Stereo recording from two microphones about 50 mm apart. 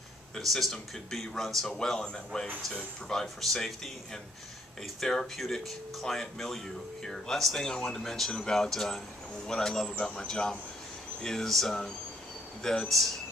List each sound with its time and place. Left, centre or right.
0.4 s speech: centre